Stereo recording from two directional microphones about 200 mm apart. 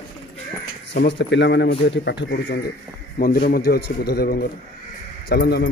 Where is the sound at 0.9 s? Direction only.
65° left (ahead or behind).